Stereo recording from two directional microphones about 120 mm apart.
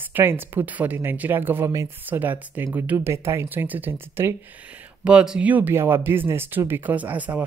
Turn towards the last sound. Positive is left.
turn(degrees=-15)  # may be behind; listen again after turning